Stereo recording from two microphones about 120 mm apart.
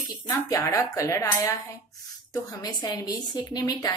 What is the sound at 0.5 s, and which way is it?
A woman's voice, 30° left (ahead or behind).